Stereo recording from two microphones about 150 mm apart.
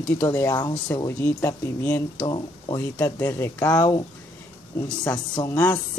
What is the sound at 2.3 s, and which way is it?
Speech, 30° left (ahead or behind).